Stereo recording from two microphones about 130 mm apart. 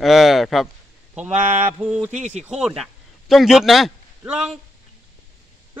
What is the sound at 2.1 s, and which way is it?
Mantra, 65° right (ahead or behind).